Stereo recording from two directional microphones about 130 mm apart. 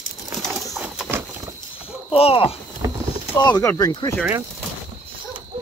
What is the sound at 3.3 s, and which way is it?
Speech, 30° left (ahead or behind).